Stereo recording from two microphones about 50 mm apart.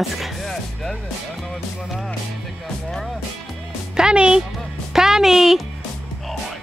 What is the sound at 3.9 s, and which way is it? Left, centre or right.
Speech, centre.